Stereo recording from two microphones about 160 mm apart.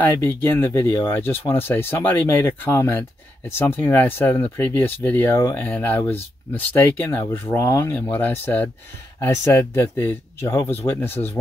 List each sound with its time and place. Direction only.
0.0 s speech: 15° left (ahead or behind)